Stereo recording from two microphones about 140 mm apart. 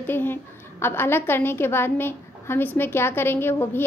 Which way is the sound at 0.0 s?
15° left (ahead or behind).